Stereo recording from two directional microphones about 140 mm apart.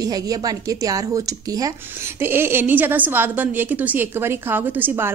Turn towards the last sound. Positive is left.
turn(degrees=-15)  # may be behind; listen again after turning